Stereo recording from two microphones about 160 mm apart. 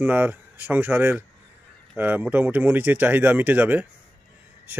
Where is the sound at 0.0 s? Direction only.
10° right (ahead or behind).